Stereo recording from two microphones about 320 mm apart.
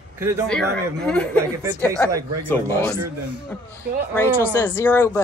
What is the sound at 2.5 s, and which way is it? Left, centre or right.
Speech, centre.